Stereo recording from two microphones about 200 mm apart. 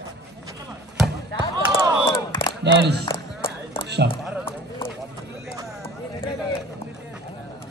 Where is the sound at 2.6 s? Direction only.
60° right (ahead or behind).